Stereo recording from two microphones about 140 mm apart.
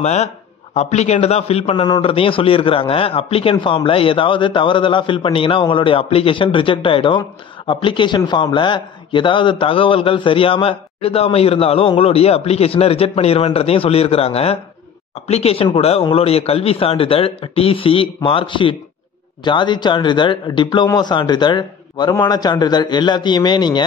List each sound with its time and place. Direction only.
0.0 s a man's voice: 50° left (ahead or behind)
1.8 s a man's voice: 35° left (ahead or behind)